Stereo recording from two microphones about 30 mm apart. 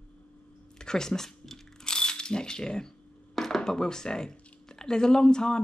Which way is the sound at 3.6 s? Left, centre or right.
Left.